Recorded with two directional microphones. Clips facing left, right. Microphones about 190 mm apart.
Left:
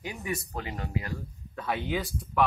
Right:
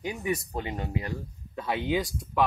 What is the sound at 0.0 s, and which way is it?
Speech, 20° right (ahead or behind).